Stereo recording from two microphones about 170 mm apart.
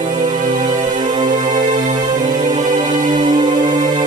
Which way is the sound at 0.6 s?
25° right (ahead or behind).